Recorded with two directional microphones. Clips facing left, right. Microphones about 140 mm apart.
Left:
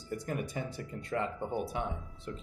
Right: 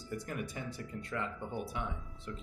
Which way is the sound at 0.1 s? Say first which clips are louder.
Left 4 dB; 30° left (ahead or behind).